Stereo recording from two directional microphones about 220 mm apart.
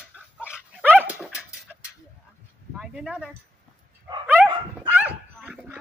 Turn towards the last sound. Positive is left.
turn(degrees=-5)  # may be behind; listen again after turning